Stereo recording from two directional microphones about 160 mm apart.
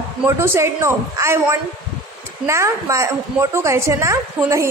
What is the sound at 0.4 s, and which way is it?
A woman's voice, 15° right (ahead or behind).